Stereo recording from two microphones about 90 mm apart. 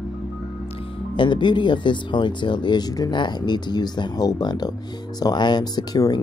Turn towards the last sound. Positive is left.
turn(degrees=45)  # may be behind; listen again after turning